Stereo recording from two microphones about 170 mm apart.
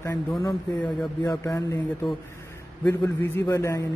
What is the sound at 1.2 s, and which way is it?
Speech, 20° left (ahead or behind).